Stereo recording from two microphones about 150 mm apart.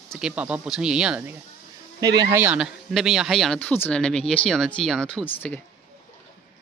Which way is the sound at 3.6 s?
10° left (ahead or behind).